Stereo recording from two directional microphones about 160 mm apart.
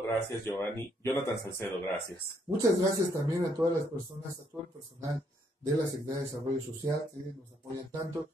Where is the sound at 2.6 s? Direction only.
20° right (ahead or behind).